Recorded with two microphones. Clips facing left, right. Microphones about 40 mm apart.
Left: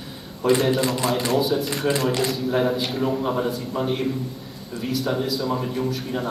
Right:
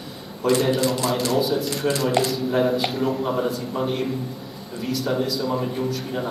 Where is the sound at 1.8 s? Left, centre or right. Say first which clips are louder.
Even; centre.